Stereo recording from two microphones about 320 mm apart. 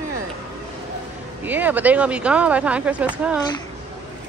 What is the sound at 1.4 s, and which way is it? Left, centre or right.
Speech, centre.